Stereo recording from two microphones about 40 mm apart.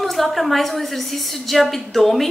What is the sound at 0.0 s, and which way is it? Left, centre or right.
A woman's voice, centre.